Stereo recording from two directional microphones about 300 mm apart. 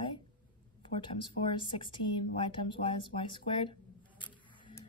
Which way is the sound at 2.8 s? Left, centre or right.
Centre.